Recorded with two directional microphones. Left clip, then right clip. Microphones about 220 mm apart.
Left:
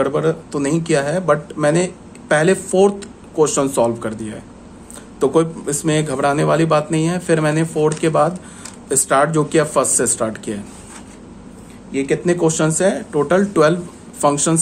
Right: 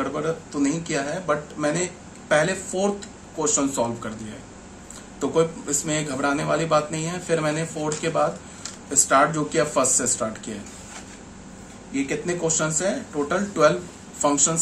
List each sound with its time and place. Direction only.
0.0 s speech: 55° left (ahead or behind)
5.2 s speech: 50° left (ahead or behind)
11.9 s speech: 50° left (ahead or behind)